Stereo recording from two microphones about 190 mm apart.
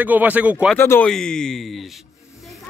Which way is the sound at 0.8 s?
10° left (ahead or behind).